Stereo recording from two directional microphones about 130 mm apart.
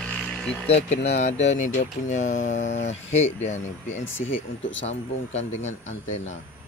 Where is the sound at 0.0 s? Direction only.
10° left (ahead or behind).